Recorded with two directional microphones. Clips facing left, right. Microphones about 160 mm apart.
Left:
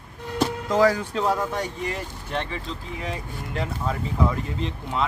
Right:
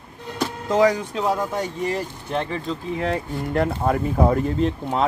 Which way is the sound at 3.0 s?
60° right (ahead or behind).